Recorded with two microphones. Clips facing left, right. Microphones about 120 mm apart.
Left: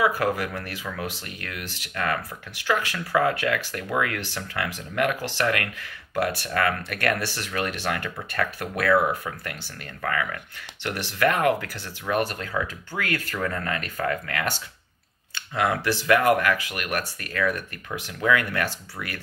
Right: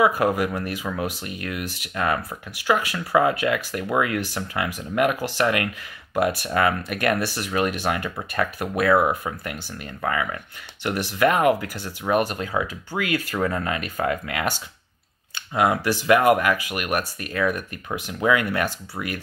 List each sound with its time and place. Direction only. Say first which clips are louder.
0.0 s speech: right 4 dB; 20° right (ahead or behind)